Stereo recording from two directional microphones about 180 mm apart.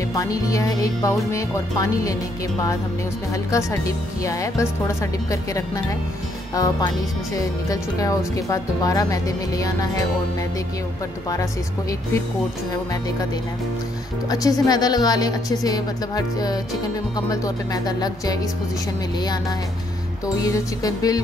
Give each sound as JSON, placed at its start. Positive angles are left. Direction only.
{"t": 0.1, "sound": "speech", "side_deg": 20}
{"t": 4.2, "sound": "speech", "side_deg": 20}
{"t": 14.3, "sound": "speech", "side_deg": 20}
{"t": 17.8, "sound": "speech", "side_deg": 20}
{"t": 20.4, "sound": "speech", "side_deg": 20}